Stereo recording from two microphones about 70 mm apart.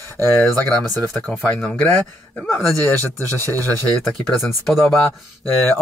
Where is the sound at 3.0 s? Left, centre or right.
Right.